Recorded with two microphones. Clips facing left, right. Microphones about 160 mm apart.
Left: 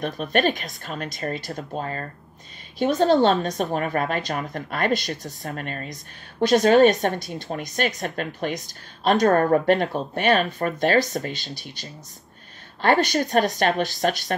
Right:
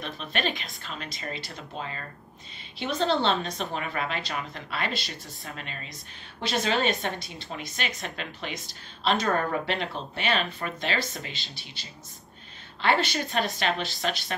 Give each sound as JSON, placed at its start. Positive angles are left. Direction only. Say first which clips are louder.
{"t": 0.0, "sound": "speech", "louder": "left 9 dB", "side_deg": 50}